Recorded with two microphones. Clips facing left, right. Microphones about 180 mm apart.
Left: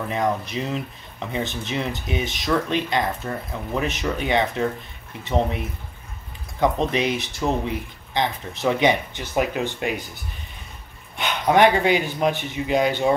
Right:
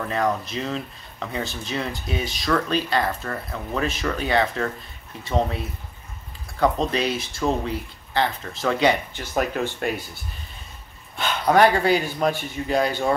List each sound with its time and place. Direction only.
0.1 s speech: 15° left (ahead or behind)
6.6 s speech: 20° left (ahead or behind)
11.1 s a sound: 20° left (ahead or behind)
12.0 s speech: 15° left (ahead or behind)